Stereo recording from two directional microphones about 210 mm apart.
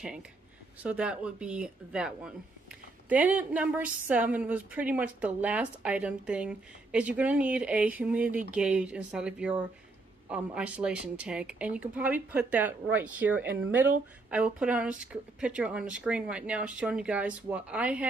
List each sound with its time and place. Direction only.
0.8 s a woman's voice: 5° right (ahead or behind)